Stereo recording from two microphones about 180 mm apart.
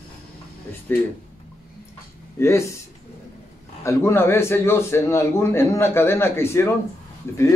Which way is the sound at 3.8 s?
15° left (ahead or behind).